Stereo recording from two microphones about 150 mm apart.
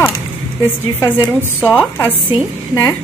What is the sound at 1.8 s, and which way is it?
A woman's voice, 15° left (ahead or behind).